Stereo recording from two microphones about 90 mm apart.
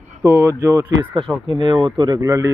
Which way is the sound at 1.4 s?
60° right (ahead or behind).